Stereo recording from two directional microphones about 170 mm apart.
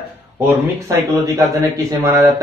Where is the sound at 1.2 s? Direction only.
20° right (ahead or behind).